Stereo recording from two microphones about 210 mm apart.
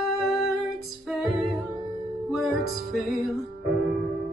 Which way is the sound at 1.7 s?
20° right (ahead or behind).